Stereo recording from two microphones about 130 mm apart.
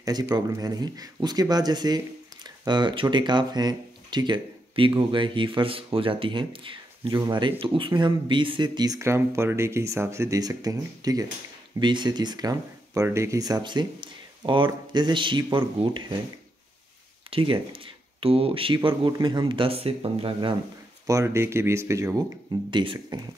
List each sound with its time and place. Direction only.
0.0 s speech: 25° right (ahead or behind)
17.3 s speech: 45° right (ahead or behind)
21.1 s speech: 25° right (ahead or behind)
22.7 s speech: 40° right (ahead or behind)